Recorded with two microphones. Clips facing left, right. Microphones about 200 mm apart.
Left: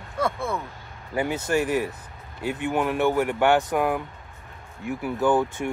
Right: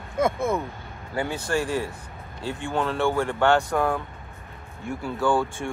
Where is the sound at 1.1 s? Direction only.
20° left (ahead or behind).